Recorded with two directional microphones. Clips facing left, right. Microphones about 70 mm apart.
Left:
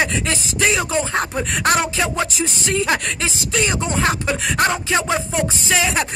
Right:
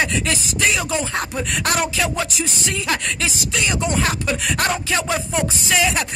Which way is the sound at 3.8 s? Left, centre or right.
Left.